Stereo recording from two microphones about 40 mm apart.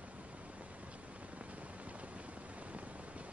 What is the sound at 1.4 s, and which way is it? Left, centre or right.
Vehicle, right.